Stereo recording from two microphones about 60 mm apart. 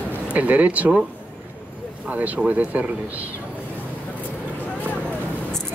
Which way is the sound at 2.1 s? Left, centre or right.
Right.